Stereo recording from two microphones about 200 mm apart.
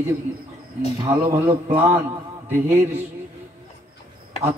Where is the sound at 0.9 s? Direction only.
15° right (ahead or behind).